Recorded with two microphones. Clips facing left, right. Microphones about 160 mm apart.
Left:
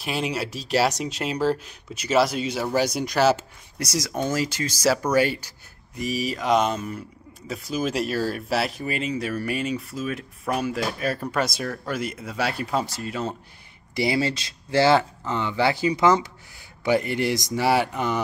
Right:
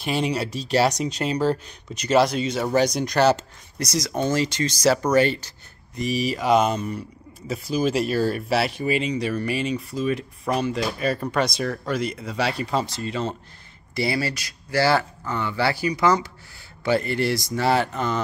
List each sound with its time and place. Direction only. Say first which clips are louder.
0.0 s speech: right 3 dB; centre (ahead or behind)